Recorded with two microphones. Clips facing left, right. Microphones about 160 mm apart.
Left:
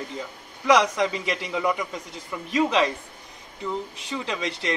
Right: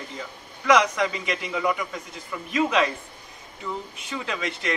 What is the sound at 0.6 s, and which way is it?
A man's voice, 30° left (ahead or behind).